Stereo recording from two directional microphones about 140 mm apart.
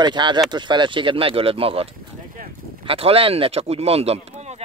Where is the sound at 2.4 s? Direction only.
75° right (ahead or behind).